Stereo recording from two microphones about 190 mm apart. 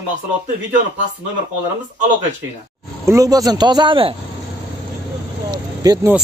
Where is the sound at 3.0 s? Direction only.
15° right (ahead or behind).